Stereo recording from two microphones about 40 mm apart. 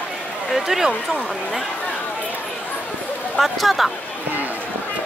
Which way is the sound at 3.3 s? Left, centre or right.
Centre.